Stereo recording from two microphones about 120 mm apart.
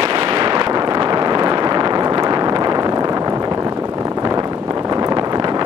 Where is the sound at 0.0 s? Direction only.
45° right (ahead or behind).